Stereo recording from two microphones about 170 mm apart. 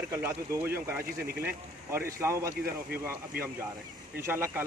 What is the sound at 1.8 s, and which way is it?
A man's voice, 15° right (ahead or behind).